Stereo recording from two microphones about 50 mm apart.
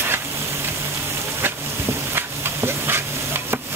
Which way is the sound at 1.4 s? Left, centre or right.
Right.